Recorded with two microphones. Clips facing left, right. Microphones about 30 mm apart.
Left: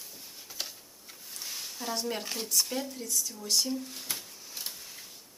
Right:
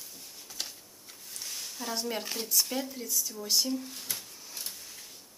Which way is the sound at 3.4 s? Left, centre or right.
Centre.